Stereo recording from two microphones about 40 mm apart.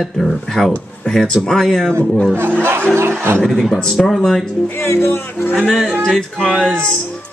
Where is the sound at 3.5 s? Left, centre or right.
Centre.